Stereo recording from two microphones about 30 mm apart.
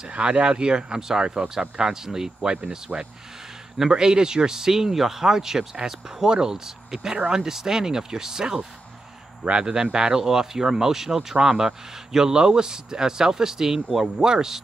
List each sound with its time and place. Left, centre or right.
0.2 s speech: right; by 2.3 s centre
2.4 s speech: right
9.4 s a man's voice: right
9.7 s speech: right
10.2 s speech: centre